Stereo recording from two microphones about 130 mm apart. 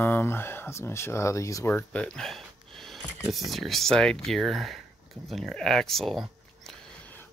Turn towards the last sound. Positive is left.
turn(degrees=5)  # may be behind; listen again after turning